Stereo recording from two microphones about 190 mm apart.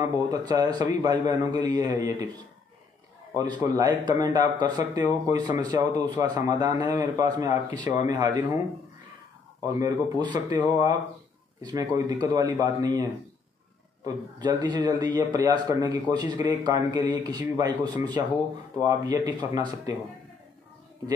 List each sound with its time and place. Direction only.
0.0 s speech: 20° right (ahead or behind)
3.6 s speech: 20° right (ahead or behind)
9.6 s speech: 20° right (ahead or behind)
11.6 s speech: 20° right (ahead or behind)
14.0 s speech: 20° right (ahead or behind)